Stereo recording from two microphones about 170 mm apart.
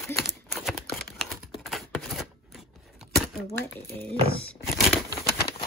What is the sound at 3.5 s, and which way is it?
Speech, 15° left (ahead or behind).